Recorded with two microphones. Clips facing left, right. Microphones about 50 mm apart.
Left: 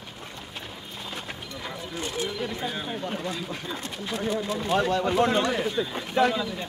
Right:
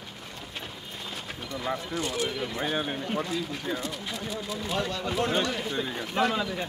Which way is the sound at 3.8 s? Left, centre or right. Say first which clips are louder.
Left 4 dB; left.